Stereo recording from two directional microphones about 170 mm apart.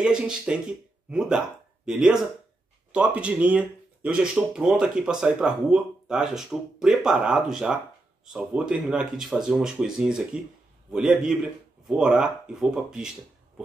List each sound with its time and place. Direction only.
0.0 s speech: 5° right (ahead or behind)
1.9 s speech: 5° right (ahead or behind)